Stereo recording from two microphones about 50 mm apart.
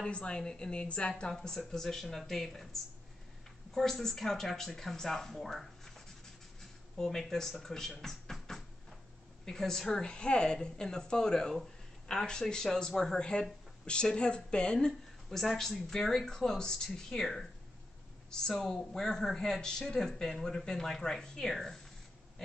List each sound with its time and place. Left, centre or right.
0.0 s a woman's voice: centre
8.0 s music: centre
9.4 s speech: centre
14.9 s speech: centre